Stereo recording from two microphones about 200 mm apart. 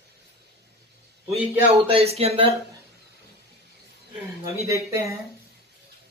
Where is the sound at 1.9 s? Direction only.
30° right (ahead or behind).